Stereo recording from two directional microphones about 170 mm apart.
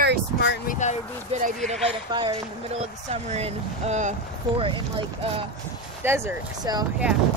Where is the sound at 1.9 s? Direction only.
25° right (ahead or behind).